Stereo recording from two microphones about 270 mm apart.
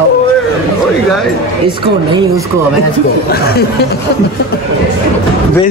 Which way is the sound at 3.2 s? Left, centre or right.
Left.